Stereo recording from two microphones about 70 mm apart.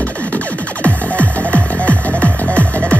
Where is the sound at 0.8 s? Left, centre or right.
Left.